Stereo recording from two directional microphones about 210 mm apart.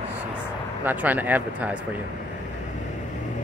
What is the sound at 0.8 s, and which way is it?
Speech, 10° right (ahead or behind).